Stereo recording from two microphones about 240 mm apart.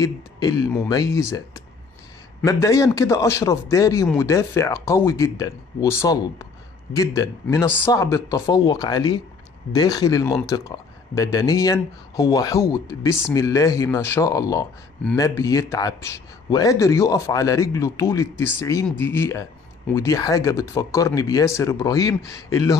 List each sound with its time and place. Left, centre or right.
0.0 s speech: centre
2.4 s speech: centre